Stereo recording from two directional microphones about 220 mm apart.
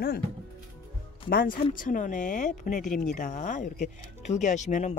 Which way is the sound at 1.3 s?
40° left (ahead or behind).